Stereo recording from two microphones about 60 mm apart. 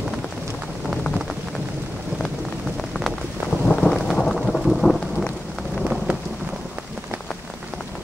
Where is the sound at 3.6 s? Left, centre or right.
Centre.